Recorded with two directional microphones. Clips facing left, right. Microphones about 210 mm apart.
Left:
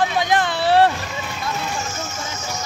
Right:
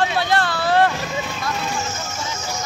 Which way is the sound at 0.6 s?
30° left (ahead or behind).